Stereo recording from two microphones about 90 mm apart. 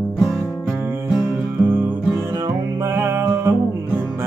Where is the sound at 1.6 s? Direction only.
20° right (ahead or behind).